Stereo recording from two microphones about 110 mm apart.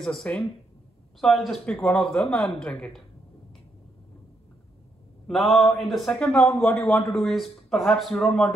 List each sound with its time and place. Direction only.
0.0 s a man's voice: 5° left (ahead or behind)
5.2 s a man's voice: centre (ahead or behind)